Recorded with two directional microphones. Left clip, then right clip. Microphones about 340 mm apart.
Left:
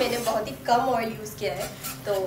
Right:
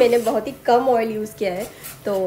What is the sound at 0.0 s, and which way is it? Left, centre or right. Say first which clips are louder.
Speech: right 8 dB; right.